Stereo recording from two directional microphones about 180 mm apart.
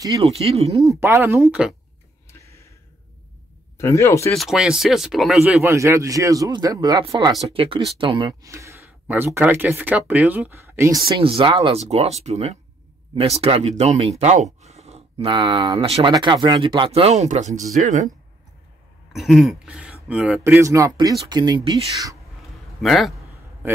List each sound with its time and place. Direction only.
0.2 s speech: 35° right (ahead or behind)
0.7 s speech: 15° right (ahead or behind)
3.7 s speech: 15° left (ahead or behind)
4.3 s speech: centre (ahead or behind)
5.6 s speech: 15° right (ahead or behind)
11.2 s speech: 30° right (ahead or behind)
19.1 s speech: centre (ahead or behind); by 22.1 s 20° right (ahead or behind)
22.8 s a man's voice: centre (ahead or behind)
23.6 s a man's voice: 10° right (ahead or behind)